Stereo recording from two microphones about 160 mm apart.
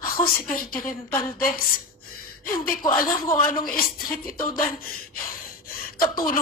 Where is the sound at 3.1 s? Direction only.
25° left (ahead or behind).